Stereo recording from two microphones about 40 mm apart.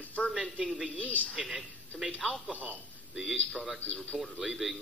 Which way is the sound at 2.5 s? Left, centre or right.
Right.